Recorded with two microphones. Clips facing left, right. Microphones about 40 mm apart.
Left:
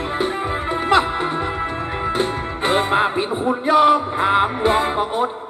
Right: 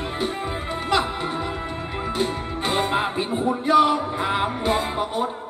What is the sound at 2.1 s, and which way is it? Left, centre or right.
Music, left.